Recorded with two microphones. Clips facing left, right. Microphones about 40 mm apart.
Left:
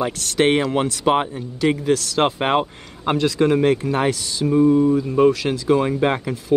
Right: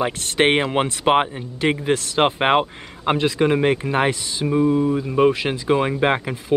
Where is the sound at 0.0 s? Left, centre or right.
Right.